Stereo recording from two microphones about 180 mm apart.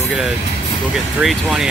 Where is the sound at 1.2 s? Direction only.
5° right (ahead or behind).